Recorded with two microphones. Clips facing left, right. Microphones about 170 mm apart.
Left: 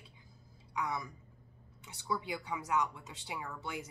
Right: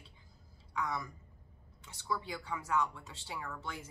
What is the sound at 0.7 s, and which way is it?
Speech, 15° left (ahead or behind).